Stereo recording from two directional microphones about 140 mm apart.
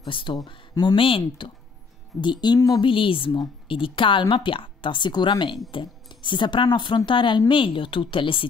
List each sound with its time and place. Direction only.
0.0 s a woman's voice: 35° left (ahead or behind)